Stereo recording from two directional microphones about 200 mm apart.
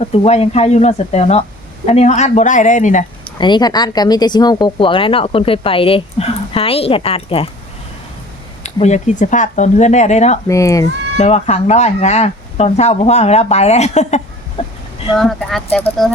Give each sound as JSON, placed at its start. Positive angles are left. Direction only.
{"t": 0.0, "sound": "speech", "side_deg": 30}
{"t": 3.3, "sound": "speech", "side_deg": 20}
{"t": 8.6, "sound": "speech", "side_deg": 35}
{"t": 10.5, "sound": "speech", "side_deg": 15}
{"t": 11.2, "sound": "speech", "side_deg": 35}
{"t": 15.1, "sound": "speech", "side_deg": 0}